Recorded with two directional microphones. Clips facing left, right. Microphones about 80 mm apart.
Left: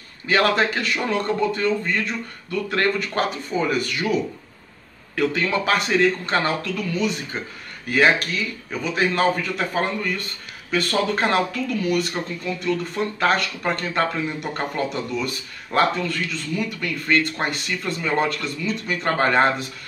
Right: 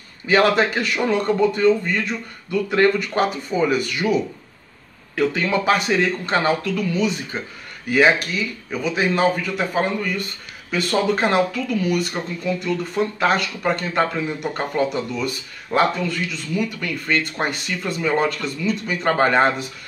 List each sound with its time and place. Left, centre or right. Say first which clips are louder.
0.3 s speech: right 3 dB; centre
8.7 s speech: right 1 dB; centre